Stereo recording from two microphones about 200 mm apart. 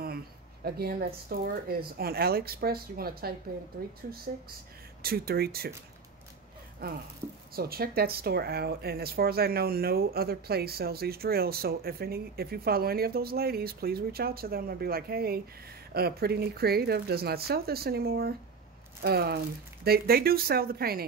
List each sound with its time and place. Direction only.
0.7 s speech: 50° right (ahead or behind)
5.0 s speech: 50° right (ahead or behind)
6.8 s speech: 50° right (ahead or behind)